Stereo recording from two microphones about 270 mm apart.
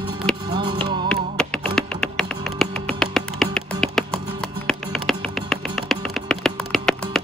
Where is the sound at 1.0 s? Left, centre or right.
Centre.